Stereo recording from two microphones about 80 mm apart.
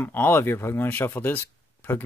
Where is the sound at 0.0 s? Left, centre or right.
Left.